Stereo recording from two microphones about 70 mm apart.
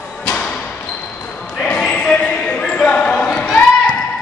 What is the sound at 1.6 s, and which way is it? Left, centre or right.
Basketball bounce, centre.